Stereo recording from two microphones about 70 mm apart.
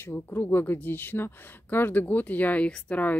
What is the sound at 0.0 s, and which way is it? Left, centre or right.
Speech, left.